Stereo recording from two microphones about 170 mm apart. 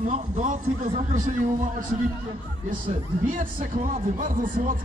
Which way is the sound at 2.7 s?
50° right (ahead or behind).